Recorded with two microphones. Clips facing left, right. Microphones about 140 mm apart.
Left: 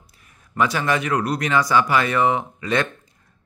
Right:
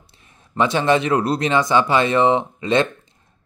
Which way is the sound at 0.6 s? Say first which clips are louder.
Right 4 dB; 25° right (ahead or behind).